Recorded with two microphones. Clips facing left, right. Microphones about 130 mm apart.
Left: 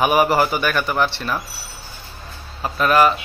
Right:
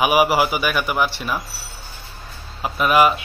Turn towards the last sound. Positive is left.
turn(degrees=-10)  # may be behind; listen again after turning